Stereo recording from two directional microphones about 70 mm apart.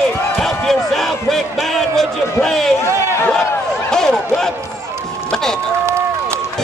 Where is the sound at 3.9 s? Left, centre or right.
Centre.